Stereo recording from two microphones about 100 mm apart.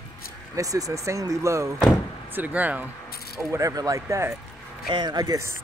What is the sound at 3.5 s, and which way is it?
Speech, 35° right (ahead or behind).